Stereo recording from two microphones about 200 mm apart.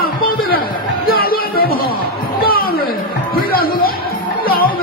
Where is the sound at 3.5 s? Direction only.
50° left (ahead or behind).